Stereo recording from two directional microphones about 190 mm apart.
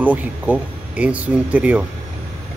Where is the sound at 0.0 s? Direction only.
10° right (ahead or behind).